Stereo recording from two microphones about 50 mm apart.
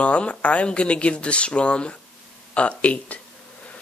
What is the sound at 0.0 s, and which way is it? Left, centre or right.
Speech, left.